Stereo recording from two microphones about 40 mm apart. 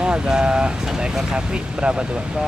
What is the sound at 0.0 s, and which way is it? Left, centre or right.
Speech, right.